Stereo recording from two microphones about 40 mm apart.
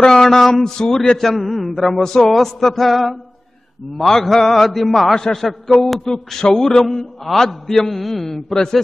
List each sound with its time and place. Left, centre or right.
0.0 s speech: centre
0.7 s mantra: centre
1.2 s a man's voice: centre
5.2 s mantra: centre